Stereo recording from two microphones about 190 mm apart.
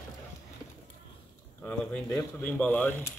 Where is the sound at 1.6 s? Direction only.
10° left (ahead or behind).